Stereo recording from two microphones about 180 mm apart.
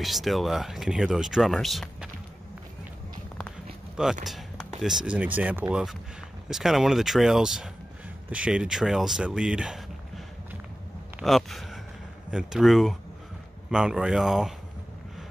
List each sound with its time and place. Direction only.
0.0 s speech: centre (ahead or behind)
3.3 s speech: centre (ahead or behind)